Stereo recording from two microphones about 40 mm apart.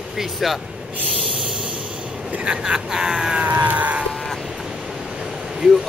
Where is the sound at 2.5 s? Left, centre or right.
Centre.